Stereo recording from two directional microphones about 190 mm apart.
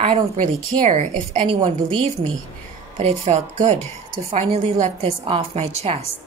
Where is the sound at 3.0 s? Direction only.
35° right (ahead or behind).